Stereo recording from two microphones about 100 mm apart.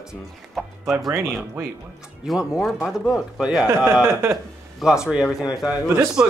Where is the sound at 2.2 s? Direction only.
5° right (ahead or behind).